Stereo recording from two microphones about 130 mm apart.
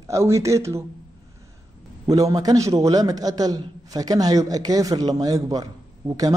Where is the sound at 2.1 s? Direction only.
25° right (ahead or behind).